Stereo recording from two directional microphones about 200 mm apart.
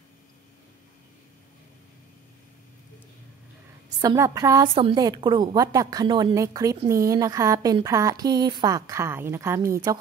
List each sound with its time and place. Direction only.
4.0 s a woman's voice: 15° right (ahead or behind)